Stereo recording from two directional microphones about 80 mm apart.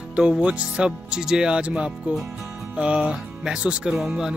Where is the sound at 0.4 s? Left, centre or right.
Centre.